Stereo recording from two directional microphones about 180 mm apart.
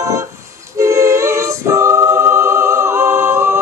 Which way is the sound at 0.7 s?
15° right (ahead or behind).